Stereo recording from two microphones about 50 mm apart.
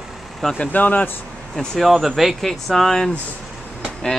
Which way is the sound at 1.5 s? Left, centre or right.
Centre.